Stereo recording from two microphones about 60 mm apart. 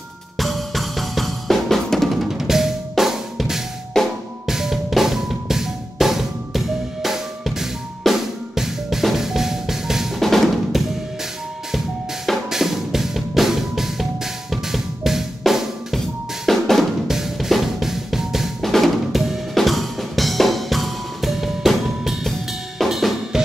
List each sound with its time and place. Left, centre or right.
0.4 s drum: centre
3.9 s drum kit: centre
4.5 s drum kit: centre
12.4 s drum: centre
22.8 s drum kit: centre